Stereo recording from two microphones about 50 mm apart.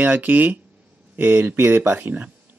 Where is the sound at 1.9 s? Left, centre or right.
Right.